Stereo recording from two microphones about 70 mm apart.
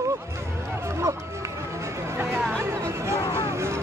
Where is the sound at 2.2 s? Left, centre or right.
Right.